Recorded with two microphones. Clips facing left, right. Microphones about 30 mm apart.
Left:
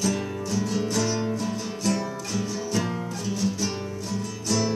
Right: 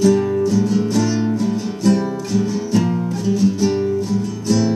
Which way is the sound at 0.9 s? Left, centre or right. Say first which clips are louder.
Right 8 dB; right.